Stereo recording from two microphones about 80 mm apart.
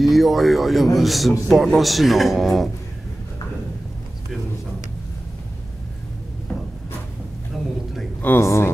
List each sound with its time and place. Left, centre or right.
0.0 s speech: centre
7.5 s a sound: centre
8.2 s speech: left